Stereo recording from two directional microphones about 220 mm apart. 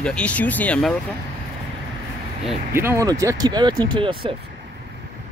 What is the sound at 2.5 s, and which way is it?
Speech, 10° right (ahead or behind).